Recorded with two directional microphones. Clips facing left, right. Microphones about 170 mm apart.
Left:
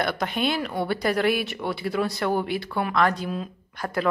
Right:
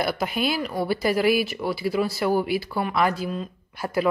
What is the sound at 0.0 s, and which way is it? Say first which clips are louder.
A woman's voice: right 1 dB; 5° right (ahead or behind).